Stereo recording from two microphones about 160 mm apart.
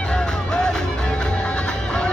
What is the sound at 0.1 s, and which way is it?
Music, 5° left (ahead or behind).